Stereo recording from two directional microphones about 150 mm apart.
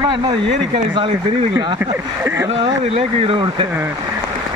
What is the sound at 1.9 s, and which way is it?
Speech, 20° right (ahead or behind).